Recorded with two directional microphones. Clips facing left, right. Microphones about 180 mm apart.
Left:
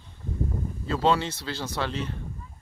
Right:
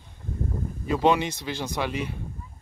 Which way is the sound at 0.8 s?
15° right (ahead or behind).